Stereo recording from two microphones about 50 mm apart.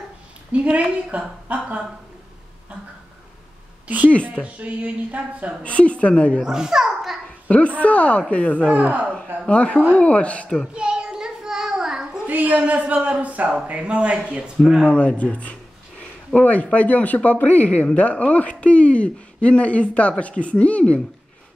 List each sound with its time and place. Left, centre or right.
0.5 s a woman's voice: right
3.8 s a woman's voice: right
5.6 s speech: left
6.4 s a child's voice: centre
7.4 s a woman's voice: left
8.7 s speech: right
9.5 s speech: left
10.7 s child singing: centre
12.3 s a woman's voice: right
14.6 s speech: centre
14.9 s speech: left